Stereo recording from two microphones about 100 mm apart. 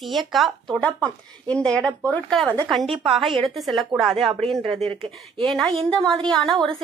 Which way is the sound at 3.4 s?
Centre (ahead or behind).